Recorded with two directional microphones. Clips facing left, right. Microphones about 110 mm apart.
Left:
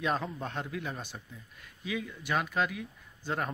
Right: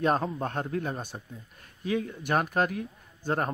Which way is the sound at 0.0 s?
45° right (ahead or behind).